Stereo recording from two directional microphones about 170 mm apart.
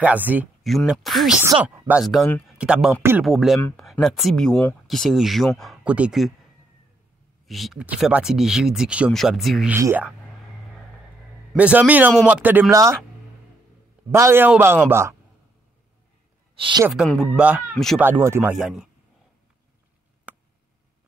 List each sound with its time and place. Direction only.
0.0 s speech: 10° right (ahead or behind)
1.4 s speech: 15° right (ahead or behind); by 2.5 s 5° left (ahead or behind)
2.5 s speech: 5° right (ahead or behind)
3.3 s speech: centre (ahead or behind)
7.4 s speech: centre (ahead or behind)
9.8 s speech: 10° right (ahead or behind)
11.5 s speech: 10° right (ahead or behind)
14.1 s speech: 15° right (ahead or behind)
16.5 s speech: 30° right (ahead or behind)
16.9 s speech: centre (ahead or behind)
20.3 s a sound: 10° right (ahead or behind)